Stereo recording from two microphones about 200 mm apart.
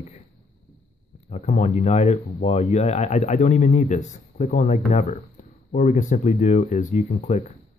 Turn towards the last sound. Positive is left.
turn(degrees=35)  # may be behind; listen again after turning